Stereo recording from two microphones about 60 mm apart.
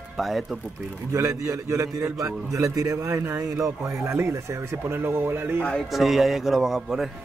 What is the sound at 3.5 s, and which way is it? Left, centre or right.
Speech, right.